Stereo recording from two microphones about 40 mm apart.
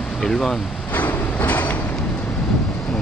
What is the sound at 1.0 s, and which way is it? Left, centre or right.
Train, left.